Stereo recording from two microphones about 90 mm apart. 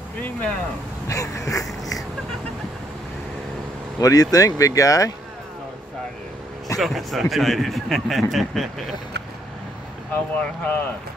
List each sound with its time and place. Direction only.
0.2 s speech: 15° left (ahead or behind)
1.0 s a sound: 40° left (ahead or behind)
4.0 s speech: 40° left (ahead or behind)
6.8 s a man's voice: centre (ahead or behind)
10.1 s speech: 20° left (ahead or behind)